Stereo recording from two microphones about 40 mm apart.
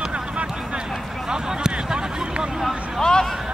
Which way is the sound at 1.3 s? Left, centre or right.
Centre.